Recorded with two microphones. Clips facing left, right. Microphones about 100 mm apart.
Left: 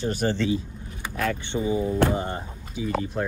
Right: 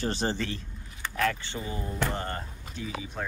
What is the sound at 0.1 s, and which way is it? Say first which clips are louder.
Speech: left 4 dB; 25° right (ahead or behind).